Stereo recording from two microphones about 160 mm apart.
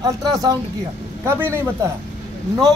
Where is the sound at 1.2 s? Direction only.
15° right (ahead or behind).